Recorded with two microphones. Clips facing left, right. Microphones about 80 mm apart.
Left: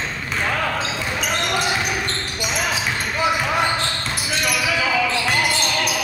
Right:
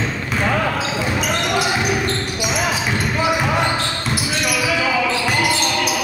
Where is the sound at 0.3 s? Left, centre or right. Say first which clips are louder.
Right 3 dB; centre.